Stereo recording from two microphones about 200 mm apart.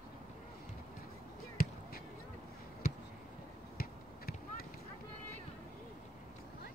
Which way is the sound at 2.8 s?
45° left (ahead or behind).